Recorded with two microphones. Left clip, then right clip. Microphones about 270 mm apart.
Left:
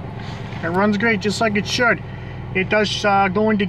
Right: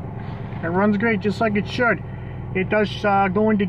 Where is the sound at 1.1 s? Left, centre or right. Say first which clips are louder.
Left 2 dB; centre.